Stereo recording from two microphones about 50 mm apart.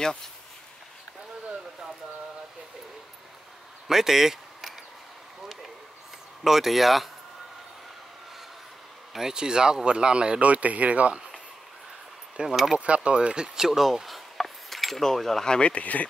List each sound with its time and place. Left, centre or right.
3.8 s a sound: centre
6.4 s speech: centre
9.1 s speech: centre
12.4 s speech: centre
12.7 s speech: right
13.7 s speech: centre; by 16.1 s left